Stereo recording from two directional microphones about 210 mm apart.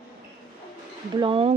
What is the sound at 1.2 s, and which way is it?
Speech, 25° right (ahead or behind).